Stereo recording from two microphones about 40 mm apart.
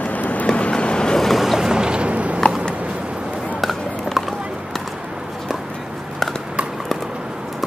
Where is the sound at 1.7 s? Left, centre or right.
Right.